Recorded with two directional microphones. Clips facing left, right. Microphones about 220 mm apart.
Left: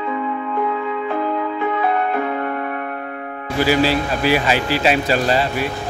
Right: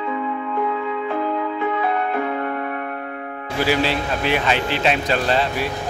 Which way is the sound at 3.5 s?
Centre (ahead or behind).